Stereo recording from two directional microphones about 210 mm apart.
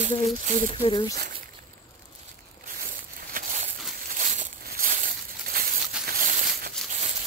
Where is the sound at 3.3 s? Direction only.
35° right (ahead or behind).